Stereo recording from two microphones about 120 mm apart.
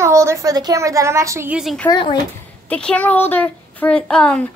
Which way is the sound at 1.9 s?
35° left (ahead or behind).